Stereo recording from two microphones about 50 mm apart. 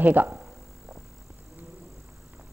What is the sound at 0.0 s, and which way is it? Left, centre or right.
Speech, right.